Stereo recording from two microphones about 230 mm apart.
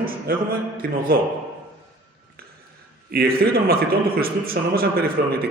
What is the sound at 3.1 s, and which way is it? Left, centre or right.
A man's voice, right.